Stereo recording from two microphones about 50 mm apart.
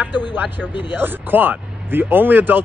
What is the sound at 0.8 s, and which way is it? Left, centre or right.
Speech, right.